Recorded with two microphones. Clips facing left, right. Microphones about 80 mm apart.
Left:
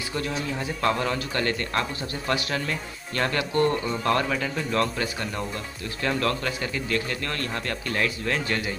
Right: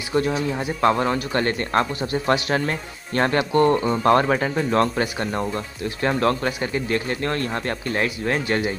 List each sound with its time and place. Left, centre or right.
0.1 s speech: right